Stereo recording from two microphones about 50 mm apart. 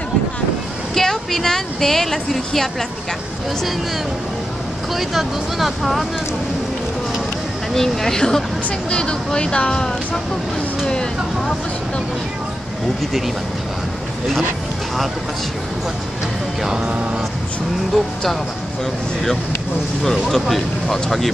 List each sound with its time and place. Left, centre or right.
0.9 s a woman's voice: centre
4.9 s speech: centre
7.7 s a woman's voice: centre
16.8 s vehicle: right
17.9 s speech: centre
20.0 s speech: centre